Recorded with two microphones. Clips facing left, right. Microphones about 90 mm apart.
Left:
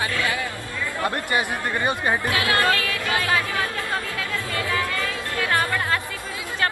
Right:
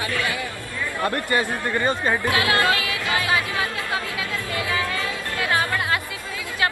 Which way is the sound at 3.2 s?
15° right (ahead or behind).